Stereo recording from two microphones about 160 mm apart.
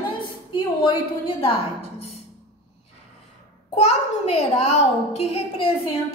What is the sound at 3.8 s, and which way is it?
A child's voice, 40° left (ahead or behind).